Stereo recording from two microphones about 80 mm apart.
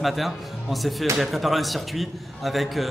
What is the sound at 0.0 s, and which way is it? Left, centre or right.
A man's voice, centre.